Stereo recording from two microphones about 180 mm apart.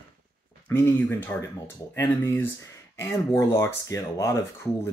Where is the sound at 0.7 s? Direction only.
10° left (ahead or behind).